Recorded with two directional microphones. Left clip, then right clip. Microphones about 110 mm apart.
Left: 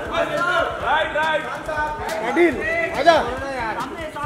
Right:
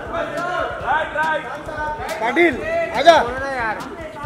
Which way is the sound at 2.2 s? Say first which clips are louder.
Right 2 dB; 50° right (ahead or behind).